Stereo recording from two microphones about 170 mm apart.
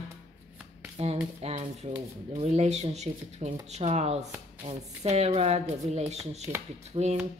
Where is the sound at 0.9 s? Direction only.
40° right (ahead or behind).